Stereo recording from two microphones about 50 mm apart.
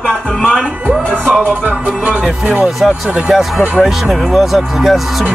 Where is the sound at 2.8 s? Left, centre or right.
Centre.